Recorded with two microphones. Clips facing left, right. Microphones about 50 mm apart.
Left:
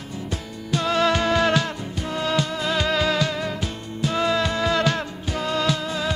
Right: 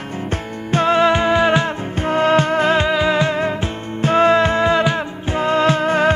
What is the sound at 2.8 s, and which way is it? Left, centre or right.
Music, right.